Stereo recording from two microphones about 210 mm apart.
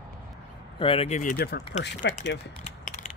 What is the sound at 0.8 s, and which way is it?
Speech, 25° left (ahead or behind).